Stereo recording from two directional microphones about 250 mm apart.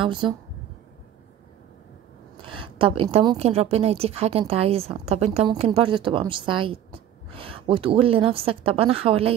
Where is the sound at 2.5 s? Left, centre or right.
Right.